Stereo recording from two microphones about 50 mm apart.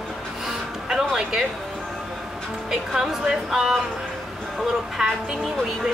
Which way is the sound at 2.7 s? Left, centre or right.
Centre.